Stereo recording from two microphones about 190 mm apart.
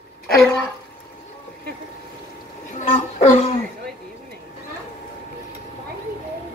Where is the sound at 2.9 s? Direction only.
35° left (ahead or behind).